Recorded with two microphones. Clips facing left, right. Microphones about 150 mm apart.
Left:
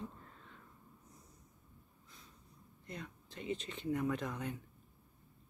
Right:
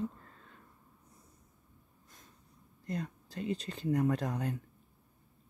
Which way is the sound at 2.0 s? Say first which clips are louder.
Right 1 dB; 45° right (ahead or behind).